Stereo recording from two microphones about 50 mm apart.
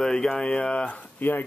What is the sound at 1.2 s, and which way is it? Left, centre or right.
Speech, left.